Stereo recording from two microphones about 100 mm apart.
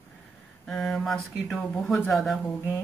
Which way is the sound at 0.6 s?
5° left (ahead or behind).